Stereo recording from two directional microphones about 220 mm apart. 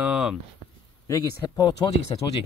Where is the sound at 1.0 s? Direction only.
15° left (ahead or behind).